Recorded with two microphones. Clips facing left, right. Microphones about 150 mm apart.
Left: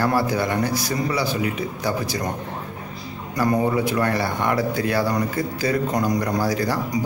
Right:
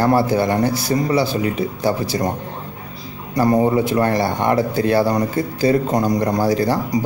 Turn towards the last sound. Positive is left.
turn(degrees=-25)  # may be behind; listen again after turning